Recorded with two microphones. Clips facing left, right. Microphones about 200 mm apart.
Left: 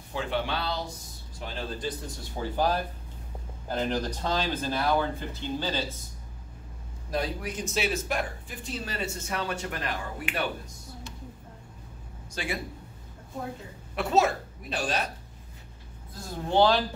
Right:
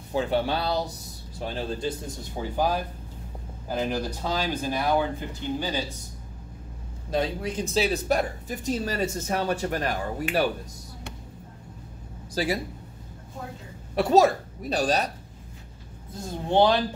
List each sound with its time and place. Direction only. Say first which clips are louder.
0.1 s speech: right 5 dB; 40° right (ahead or behind)
2.3 s speech: right 1 dB; 15° right (ahead or behind)
7.1 s speech: right 4 dB; 25° right (ahead or behind)
12.4 s speech: right 8 dB; 35° right (ahead or behind)
13.9 s speech: right 5 dB; 40° right (ahead or behind)
16.1 s speech: right 3 dB; 20° right (ahead or behind)